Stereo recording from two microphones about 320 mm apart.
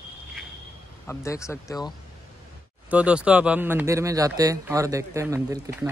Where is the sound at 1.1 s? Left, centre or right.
Centre.